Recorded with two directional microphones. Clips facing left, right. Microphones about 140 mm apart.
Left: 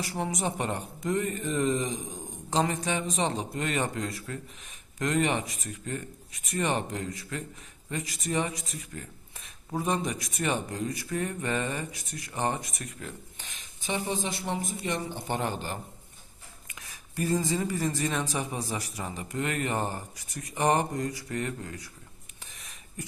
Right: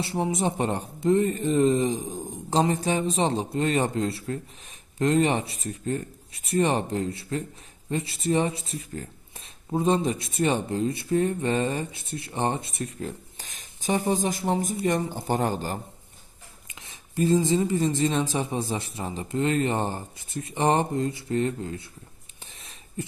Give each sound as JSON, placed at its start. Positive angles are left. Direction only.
{"t": 0.0, "sound": "speech", "side_deg": -25}
{"t": 16.7, "sound": "a woman's voice", "side_deg": -25}
{"t": 22.5, "sound": "a sound", "side_deg": -30}